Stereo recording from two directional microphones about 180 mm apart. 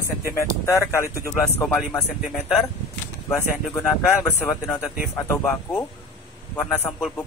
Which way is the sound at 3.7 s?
15° left (ahead or behind).